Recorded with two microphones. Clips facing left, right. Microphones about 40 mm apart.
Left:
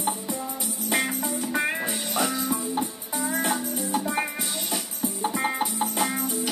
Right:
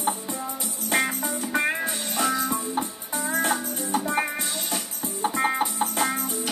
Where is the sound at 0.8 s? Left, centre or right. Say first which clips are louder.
Right 2 dB; centre.